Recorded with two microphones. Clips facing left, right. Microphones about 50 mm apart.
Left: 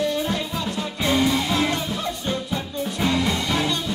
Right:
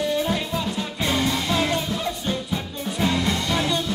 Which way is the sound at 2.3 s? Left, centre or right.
Centre.